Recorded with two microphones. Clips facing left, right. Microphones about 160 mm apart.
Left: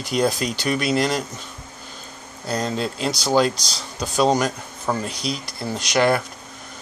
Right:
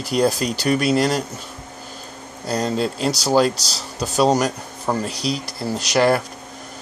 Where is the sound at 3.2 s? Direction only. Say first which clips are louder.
Right 1 dB; 5° right (ahead or behind).